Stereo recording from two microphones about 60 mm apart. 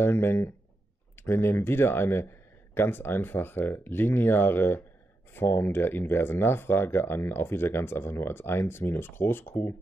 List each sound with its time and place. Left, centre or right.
0.0 s speech: left